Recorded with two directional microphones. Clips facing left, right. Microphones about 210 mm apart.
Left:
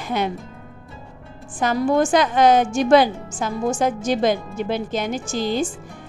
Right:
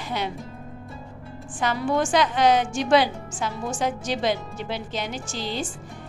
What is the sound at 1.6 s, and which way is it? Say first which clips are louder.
A woman's voice: left 5 dB; 45° left (ahead or behind).